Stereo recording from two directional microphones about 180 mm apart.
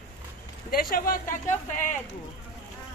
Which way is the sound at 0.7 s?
55° left (ahead or behind).